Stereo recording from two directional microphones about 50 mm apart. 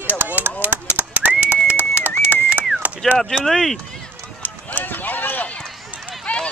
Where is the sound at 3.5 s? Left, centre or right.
Centre.